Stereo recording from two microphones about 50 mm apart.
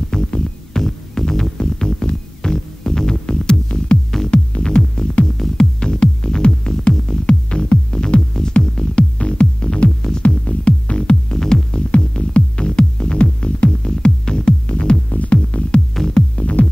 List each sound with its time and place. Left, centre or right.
0.1 s music: centre; by 15.7 s left
15.9 s music: centre